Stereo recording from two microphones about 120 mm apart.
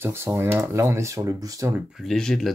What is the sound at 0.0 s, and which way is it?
Speech, 20° right (ahead or behind).